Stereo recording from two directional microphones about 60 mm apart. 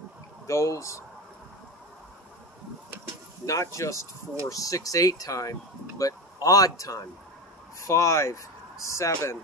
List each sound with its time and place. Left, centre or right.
0.5 s speech: left
3.4 s speech: left
4.5 s speech: left
7.8 s speech: left